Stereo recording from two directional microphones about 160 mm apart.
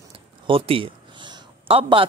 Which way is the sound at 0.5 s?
35° right (ahead or behind).